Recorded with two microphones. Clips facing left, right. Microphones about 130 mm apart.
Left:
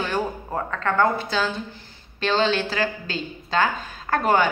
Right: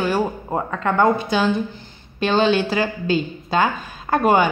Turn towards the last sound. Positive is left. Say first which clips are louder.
# right 4 dB
turn(degrees=-15)  # may be behind; listen again after turning